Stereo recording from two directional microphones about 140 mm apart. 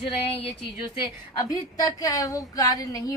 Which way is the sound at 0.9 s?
30° left (ahead or behind).